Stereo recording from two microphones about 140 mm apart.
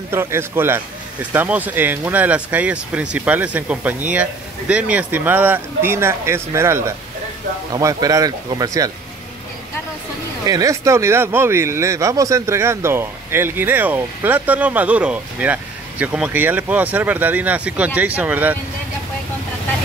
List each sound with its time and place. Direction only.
0.1 s speech: 15° right (ahead or behind)
10.4 s speech: 25° right (ahead or behind)